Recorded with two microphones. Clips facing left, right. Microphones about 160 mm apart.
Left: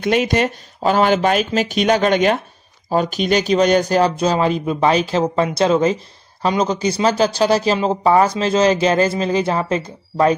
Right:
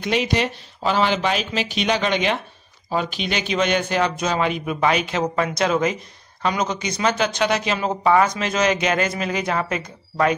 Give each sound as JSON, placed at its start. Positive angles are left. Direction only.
{"t": 0.0, "sound": "speech", "side_deg": 50}